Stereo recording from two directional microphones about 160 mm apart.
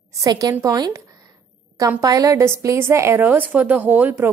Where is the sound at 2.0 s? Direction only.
20° right (ahead or behind).